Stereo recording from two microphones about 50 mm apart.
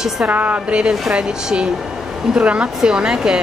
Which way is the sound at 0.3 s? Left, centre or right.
Right.